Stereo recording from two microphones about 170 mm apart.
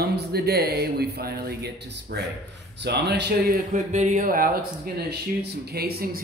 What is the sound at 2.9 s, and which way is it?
Speech, 80° right.